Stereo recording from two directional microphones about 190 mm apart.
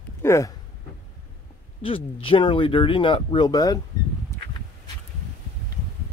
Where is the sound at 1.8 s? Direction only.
30° left (ahead or behind).